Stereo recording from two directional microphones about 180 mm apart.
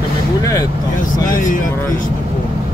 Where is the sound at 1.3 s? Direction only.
50° left (ahead or behind).